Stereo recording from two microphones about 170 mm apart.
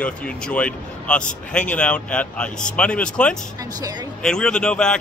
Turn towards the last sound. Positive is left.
turn(degrees=5)  # may be behind; listen again after turning